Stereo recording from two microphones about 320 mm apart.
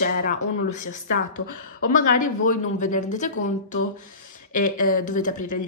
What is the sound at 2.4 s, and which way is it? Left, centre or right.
Speech, left.